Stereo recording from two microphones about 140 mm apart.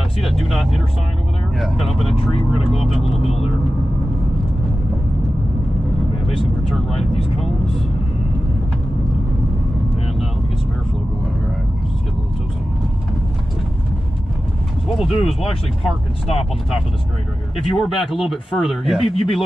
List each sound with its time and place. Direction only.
0.2 s speech: centre (ahead or behind)
6.2 s speech: centre (ahead or behind)
15.0 s speech: centre (ahead or behind)
17.6 s speech: centre (ahead or behind)
18.9 s speech: 40° left (ahead or behind)